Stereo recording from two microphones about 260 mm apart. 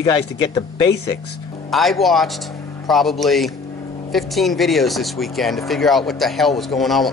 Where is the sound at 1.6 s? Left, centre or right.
Centre.